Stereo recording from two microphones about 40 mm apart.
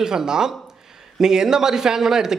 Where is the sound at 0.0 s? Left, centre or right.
Centre.